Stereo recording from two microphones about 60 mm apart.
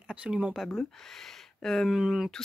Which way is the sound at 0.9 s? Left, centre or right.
Centre.